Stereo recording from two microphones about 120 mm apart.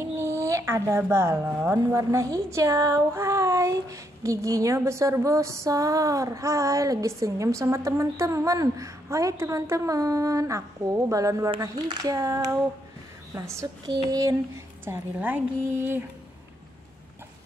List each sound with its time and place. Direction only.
0.0 s speech: 25° right (ahead or behind)
14.9 s a woman's voice: 15° right (ahead or behind)